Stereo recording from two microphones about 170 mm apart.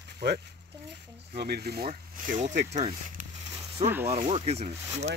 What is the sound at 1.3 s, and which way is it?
Speech, 65° right (ahead or behind).